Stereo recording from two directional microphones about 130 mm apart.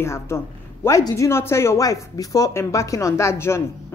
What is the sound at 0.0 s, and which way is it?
Speech, 20° left (ahead or behind).